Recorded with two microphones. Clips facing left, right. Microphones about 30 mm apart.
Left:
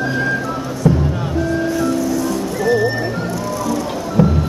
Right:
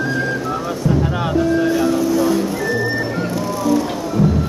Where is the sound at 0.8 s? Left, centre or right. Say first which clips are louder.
Left 3 dB; left.